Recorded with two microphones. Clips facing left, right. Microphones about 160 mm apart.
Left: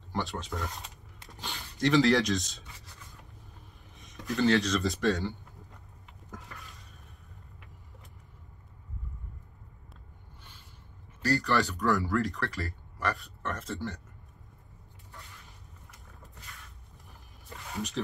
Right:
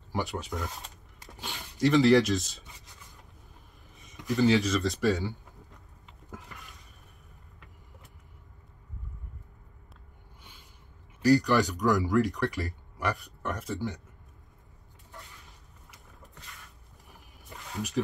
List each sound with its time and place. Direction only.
0.1 s speech: 10° right (ahead or behind)
3.9 s speech: centre (ahead or behind)
11.2 s speech: 15° right (ahead or behind)
17.7 s speech: 5° right (ahead or behind)